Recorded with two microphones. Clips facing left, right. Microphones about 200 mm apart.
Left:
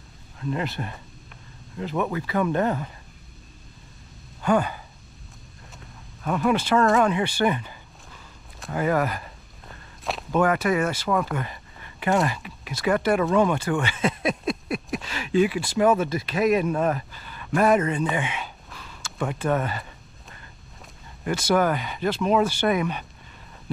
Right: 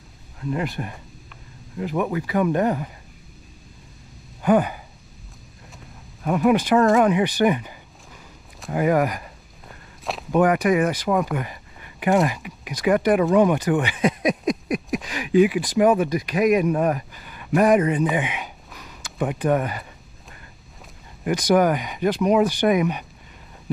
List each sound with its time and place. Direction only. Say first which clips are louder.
0.5 s speech: right 2 dB; 15° right (ahead or behind)
4.4 s speech: right 4 dB; 15° right (ahead or behind)
6.2 s speech: right 4 dB; 15° right (ahead or behind)
8.7 s speech: right 4 dB; 15° right (ahead or behind)
10.3 s speech: right 4 dB; 15° right (ahead or behind)
18.1 s a sound: right 3 dB; 15° right (ahead or behind)
21.2 s speech: right 4 dB; 15° right (ahead or behind)